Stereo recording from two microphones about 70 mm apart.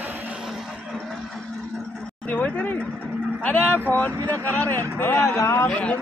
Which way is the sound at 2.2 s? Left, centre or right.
Centre.